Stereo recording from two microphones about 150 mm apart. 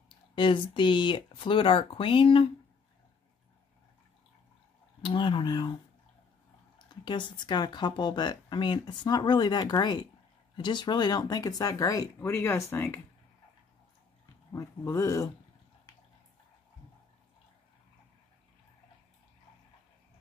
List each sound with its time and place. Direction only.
0.1 s speech: 35° left (ahead or behind)
5.0 s speech: 35° left (ahead or behind)
6.8 s speech: 30° left (ahead or behind); by 13.0 s 15° left (ahead or behind)
14.5 s speech: 20° left (ahead or behind)